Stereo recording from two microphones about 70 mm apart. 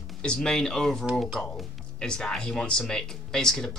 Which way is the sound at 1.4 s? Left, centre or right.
Centre.